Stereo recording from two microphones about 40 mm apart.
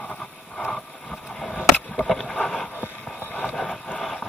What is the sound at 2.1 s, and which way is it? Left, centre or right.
Boat, centre.